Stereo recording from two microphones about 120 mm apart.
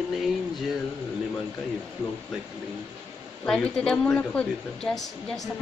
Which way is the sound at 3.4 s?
5° left (ahead or behind).